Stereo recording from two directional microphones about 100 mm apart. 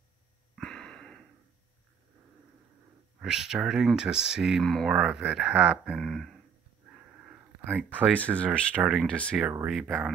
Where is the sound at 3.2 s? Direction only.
5° right (ahead or behind).